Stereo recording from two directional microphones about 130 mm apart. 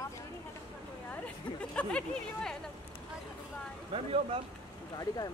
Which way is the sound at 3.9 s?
45° right (ahead or behind).